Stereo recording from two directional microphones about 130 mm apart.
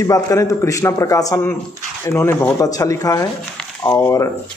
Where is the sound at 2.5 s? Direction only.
25° left (ahead or behind).